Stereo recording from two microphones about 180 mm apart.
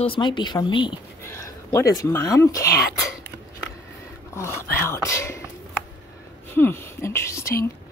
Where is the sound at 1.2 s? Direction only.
15° left (ahead or behind).